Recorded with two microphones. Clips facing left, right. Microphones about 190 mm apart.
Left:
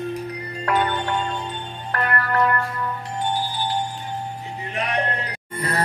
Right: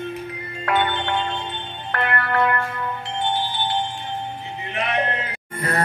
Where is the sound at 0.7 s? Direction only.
40° left (ahead or behind).